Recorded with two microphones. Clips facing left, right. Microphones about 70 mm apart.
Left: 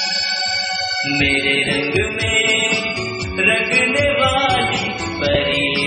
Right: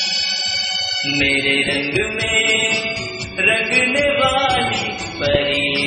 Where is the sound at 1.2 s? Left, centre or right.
Centre.